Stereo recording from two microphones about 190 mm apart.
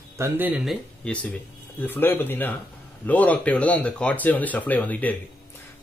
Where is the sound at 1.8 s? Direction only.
10° left (ahead or behind).